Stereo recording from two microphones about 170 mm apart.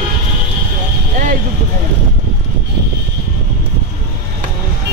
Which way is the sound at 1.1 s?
50° right (ahead or behind).